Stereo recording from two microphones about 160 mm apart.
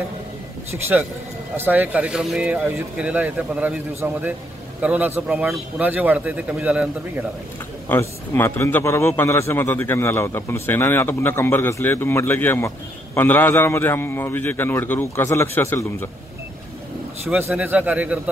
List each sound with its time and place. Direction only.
0.7 s speech: 15° right (ahead or behind)
7.9 s a man's voice: 15° left (ahead or behind)
17.3 s speech: 10° right (ahead or behind)